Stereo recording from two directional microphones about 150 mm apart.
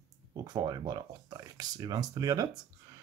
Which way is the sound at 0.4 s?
25° right (ahead or behind).